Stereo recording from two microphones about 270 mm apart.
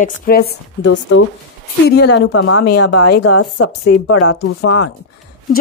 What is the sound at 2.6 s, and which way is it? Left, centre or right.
A woman's voice, left.